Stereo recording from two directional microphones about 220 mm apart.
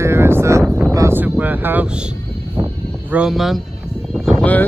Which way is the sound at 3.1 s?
Centre (ahead or behind).